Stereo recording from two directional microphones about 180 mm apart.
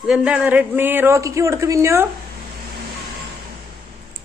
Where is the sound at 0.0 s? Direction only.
5° right (ahead or behind).